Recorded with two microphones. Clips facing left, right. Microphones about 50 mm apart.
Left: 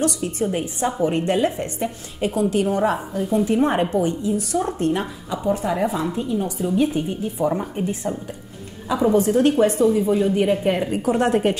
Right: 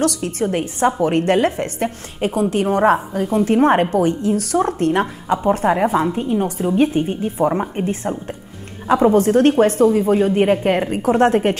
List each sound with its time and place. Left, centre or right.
0.0 s a woman's voice: right
2.1 s a woman's voice: right